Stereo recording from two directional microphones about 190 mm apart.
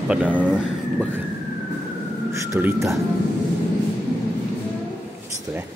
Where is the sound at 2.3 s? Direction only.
15° right (ahead or behind).